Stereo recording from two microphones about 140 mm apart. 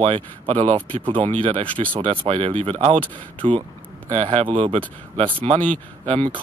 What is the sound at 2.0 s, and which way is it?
Speech, 45° right (ahead or behind).